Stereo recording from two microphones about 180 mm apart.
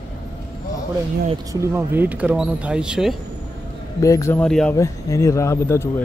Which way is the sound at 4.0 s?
15° left (ahead or behind).